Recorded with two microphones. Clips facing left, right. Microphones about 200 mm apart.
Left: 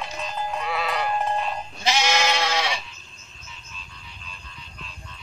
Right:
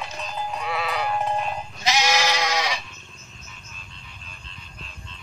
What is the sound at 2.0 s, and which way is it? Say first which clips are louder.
Goat: even; 5° right (ahead or behind).